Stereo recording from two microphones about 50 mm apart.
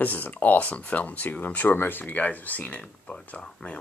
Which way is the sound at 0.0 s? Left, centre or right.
Left.